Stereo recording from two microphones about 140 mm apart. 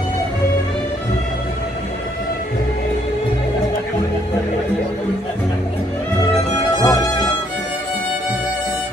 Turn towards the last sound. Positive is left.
turn(degrees=30)  # may be behind; listen again after turning